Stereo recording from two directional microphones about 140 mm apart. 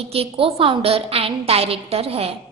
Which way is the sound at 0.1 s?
45° right (ahead or behind).